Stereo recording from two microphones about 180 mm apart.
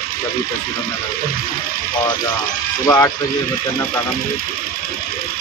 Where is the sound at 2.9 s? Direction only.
15° left (ahead or behind).